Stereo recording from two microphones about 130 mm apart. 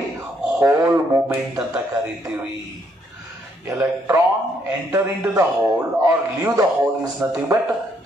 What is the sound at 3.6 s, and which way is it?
A man's voice, 25° right (ahead or behind).